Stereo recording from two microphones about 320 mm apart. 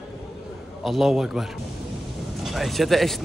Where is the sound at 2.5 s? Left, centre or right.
Centre.